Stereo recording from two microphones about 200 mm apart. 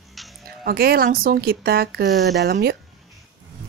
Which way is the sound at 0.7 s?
50° right (ahead or behind).